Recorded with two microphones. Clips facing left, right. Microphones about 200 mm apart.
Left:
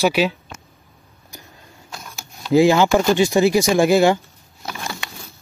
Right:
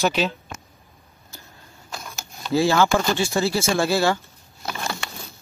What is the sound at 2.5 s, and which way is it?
Speech, 15° left (ahead or behind).